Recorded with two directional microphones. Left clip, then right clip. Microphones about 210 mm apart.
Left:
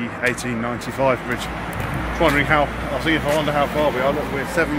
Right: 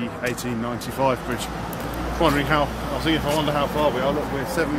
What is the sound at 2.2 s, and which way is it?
Speech, centre (ahead or behind).